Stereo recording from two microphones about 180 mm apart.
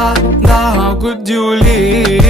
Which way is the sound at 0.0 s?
Centre (ahead or behind).